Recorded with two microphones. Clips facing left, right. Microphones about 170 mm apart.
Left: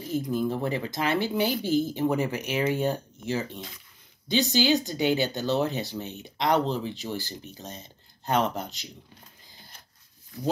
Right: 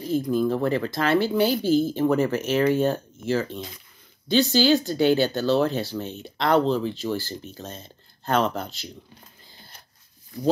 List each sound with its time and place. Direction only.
0.1 s speech: 15° left (ahead or behind)